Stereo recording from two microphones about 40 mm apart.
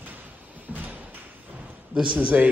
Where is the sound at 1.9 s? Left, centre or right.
Right.